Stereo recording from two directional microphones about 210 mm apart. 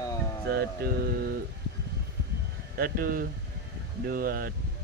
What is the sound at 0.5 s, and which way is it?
Speech, 50° right (ahead or behind).